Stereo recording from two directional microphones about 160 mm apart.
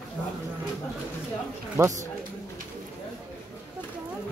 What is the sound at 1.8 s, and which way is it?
Speech, 15° right (ahead or behind).